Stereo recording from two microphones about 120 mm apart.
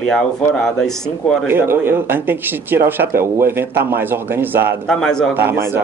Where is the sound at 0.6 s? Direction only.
5° left (ahead or behind).